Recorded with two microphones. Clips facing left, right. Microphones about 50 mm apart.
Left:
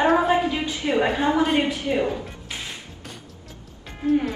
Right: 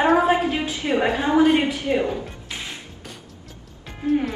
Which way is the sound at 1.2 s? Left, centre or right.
Right.